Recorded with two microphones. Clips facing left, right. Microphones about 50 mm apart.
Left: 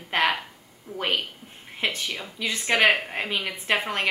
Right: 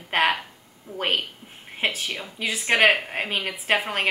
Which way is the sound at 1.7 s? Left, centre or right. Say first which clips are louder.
Right 1 dB; centre.